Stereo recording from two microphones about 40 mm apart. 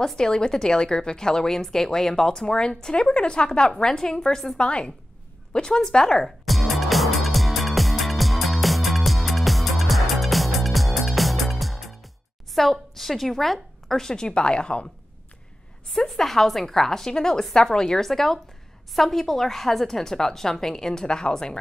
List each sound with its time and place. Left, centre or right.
0.0 s a woman's voice: centre
4.6 s a woman's voice: left
6.4 s music: centre
12.5 s a woman's voice: centre; by 14.9 s left
16.1 s a woman's voice: centre